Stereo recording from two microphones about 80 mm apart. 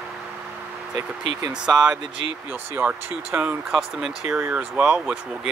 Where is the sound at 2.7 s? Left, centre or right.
Right.